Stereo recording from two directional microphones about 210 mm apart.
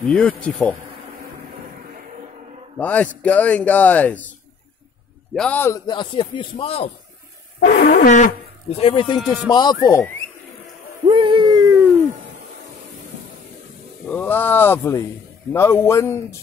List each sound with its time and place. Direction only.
0.0 s a man's voice: 5° left (ahead or behind)
2.8 s a man's voice: 5° left (ahead or behind)
5.3 s a man's voice: 5° left (ahead or behind)
5.9 s speech: 20° left (ahead or behind)
7.6 s a man's voice: 40° left (ahead or behind); by 10.1 s 15° left (ahead or behind)
11.1 s a sound: 25° right (ahead or behind)
14.1 s a man's voice: 10° left (ahead or behind)